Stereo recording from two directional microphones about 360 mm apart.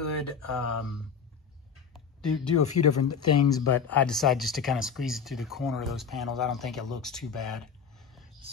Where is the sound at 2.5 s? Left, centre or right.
Left.